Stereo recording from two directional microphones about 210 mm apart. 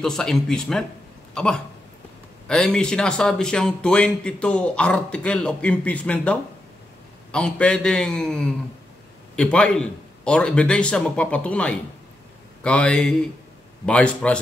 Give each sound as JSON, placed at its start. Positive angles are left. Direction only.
{"t": 0.0, "sound": "speech", "side_deg": 0}